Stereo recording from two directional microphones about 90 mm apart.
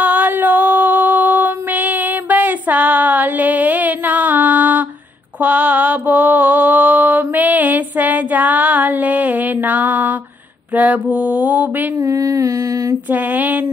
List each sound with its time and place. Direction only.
0.0 s female singing: 20° right (ahead or behind)
5.4 s mantra: 20° right (ahead or behind)
12.0 s a sound: 35° right (ahead or behind)
13.1 s female singing: 20° right (ahead or behind)